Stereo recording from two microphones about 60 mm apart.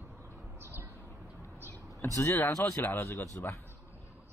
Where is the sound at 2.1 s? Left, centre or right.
Left.